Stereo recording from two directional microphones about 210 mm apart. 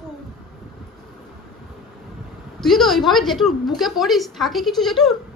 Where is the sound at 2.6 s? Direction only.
Centre (ahead or behind).